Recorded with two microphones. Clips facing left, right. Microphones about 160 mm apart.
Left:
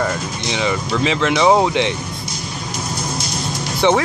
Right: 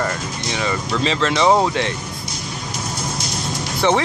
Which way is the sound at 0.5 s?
15° left (ahead or behind).